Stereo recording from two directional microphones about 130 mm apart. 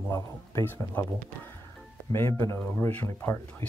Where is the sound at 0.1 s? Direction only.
20° left (ahead or behind).